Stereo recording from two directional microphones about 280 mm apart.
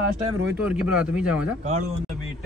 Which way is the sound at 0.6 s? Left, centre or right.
Centre.